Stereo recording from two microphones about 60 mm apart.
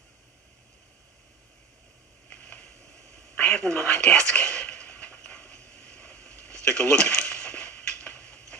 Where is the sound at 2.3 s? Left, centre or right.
Left.